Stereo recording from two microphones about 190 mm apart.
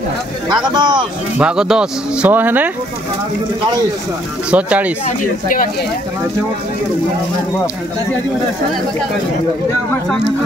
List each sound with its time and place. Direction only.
0.7 s speech: 25° right (ahead or behind)
1.4 s speech: 5° right (ahead or behind)
4.5 s speech: 5° right (ahead or behind)
5.0 s speech: 45° left (ahead or behind)